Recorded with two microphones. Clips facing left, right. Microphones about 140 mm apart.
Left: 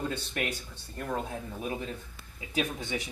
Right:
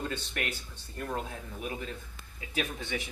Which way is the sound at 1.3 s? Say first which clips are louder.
Left 3 dB; 25° left (ahead or behind).